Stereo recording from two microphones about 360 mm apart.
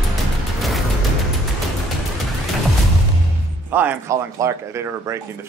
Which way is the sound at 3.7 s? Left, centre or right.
Centre.